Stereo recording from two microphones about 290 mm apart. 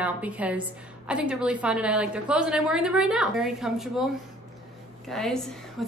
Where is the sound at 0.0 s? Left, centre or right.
Centre.